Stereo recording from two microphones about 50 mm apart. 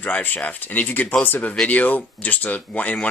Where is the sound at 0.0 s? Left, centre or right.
Left.